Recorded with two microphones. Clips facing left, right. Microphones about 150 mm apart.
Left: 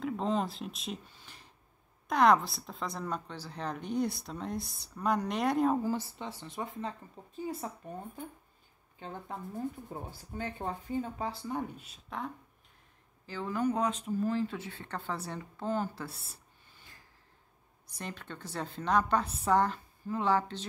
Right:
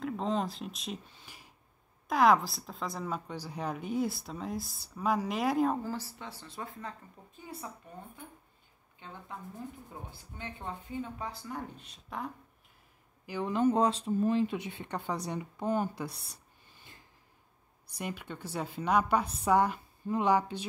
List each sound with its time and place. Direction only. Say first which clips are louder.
0.0 s a woman's voice: left 1 dB; centre (ahead or behind)
5.8 s speech: left 4 dB; 20° left (ahead or behind)
10.1 s a woman's voice: left 6 dB; 40° left (ahead or behind)
11.7 s a woman's voice: even; 5° left (ahead or behind)
13.3 s speech: right 4 dB; 20° right (ahead or behind)
14.2 s a woman's voice: right 4 dB; 20° right (ahead or behind)
17.9 s a woman's voice: right 3 dB; 10° right (ahead or behind)